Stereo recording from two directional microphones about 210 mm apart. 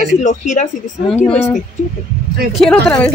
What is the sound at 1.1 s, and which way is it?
Speech, 10° left (ahead or behind).